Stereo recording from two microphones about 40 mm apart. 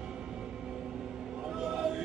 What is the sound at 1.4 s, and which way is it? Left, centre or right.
Music, centre.